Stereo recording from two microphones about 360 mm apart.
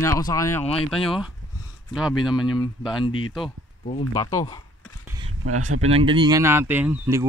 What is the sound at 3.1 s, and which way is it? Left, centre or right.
Speech, left.